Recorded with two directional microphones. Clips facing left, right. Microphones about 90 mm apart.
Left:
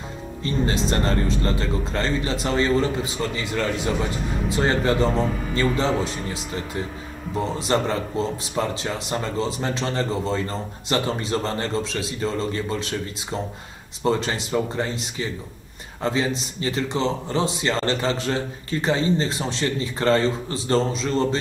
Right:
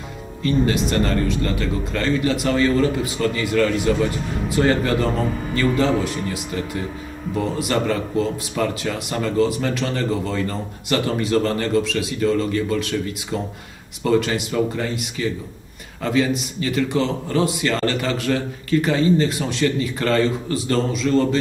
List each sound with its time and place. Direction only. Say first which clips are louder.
0.4 s speech: right 4 dB; 30° left (ahead or behind)